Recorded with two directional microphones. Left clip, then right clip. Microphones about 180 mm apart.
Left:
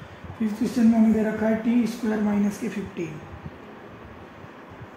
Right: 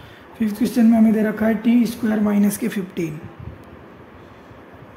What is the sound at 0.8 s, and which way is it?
Speech, 75° right (ahead or behind).